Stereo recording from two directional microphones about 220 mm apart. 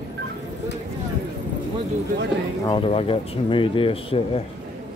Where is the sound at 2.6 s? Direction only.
25° left (ahead or behind).